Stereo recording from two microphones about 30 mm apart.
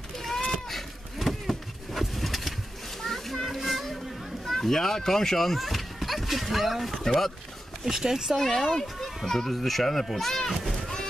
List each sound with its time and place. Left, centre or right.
0.2 s a sound: centre
0.7 s vehicle: centre
3.0 s splash: centre
3.4 s a sound: centre
4.5 s speech: centre
6.9 s speech: centre
7.8 s speech: centre
8.4 s speech: centre
9.0 s children playing: centre
9.5 s speech: centre
10.5 s run: centre